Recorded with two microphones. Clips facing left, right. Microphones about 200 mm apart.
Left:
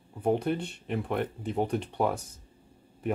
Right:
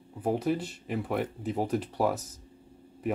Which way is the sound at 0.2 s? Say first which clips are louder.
Left 1 dB; 5° right (ahead or behind).